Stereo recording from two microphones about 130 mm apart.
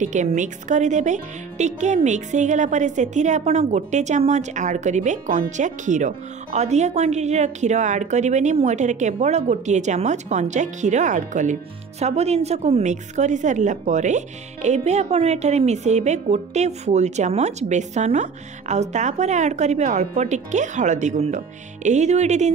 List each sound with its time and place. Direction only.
0.0 s speech: 70° right (ahead or behind)
12.0 s speech: 55° right (ahead or behind)